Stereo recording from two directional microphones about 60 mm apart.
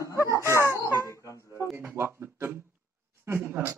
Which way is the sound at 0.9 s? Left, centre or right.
Left.